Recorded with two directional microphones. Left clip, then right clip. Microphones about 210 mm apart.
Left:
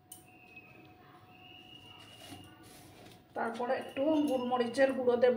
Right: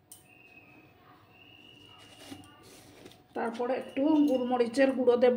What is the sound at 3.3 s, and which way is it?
Speech, 50° right (ahead or behind).